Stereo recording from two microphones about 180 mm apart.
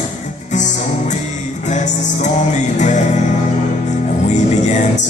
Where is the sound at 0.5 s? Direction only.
40° left (ahead or behind).